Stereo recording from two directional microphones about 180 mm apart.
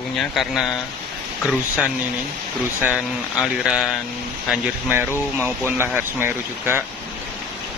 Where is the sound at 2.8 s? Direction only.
5° right (ahead or behind).